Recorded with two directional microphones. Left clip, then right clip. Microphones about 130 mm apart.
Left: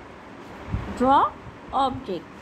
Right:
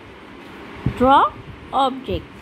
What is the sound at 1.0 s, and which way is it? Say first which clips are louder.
Speech: right 5 dB; 20° right (ahead or behind).